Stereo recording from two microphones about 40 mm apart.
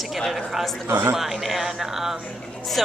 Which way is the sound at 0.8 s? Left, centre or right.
Right.